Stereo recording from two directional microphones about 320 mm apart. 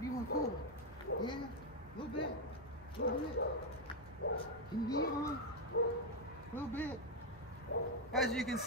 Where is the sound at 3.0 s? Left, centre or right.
Left.